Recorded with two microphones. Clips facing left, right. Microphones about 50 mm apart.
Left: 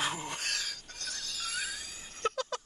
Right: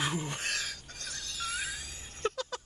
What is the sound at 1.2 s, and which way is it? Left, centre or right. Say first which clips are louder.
Music: right 2 dB; centre.